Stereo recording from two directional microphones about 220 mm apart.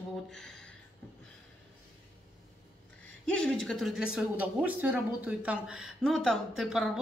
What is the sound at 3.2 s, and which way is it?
Speech, 5° left (ahead or behind).